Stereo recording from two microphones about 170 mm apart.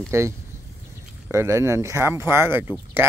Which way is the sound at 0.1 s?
15° right (ahead or behind).